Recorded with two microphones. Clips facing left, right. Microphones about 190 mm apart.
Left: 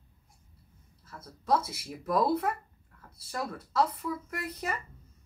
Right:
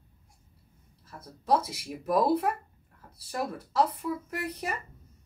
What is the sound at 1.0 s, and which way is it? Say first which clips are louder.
Speech: right 2 dB; 15° right (ahead or behind).